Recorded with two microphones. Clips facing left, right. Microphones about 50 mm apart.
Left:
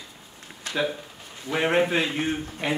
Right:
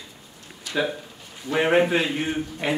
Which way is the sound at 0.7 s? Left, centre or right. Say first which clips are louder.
Right 2 dB; left.